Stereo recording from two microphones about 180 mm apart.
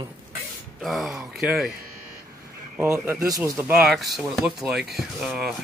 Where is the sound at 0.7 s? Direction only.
Centre (ahead or behind).